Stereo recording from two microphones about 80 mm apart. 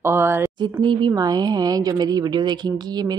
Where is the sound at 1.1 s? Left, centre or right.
Right.